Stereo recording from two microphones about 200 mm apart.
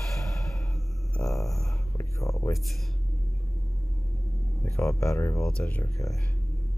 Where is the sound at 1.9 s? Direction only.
15° left (ahead or behind).